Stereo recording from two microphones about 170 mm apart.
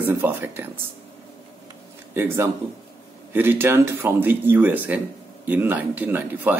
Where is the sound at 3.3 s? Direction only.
10° right (ahead or behind).